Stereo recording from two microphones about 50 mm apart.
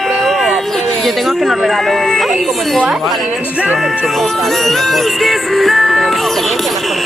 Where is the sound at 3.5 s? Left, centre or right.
Right.